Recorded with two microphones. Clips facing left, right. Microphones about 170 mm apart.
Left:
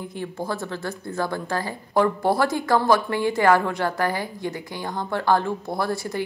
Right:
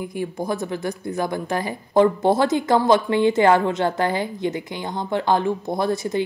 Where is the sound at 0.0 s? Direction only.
10° right (ahead or behind).